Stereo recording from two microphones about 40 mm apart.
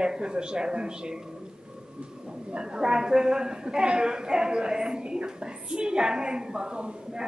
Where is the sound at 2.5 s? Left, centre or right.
Right.